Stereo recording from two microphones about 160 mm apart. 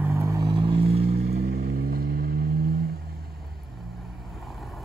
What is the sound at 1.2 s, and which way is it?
Vehicle, 70° right (ahead or behind).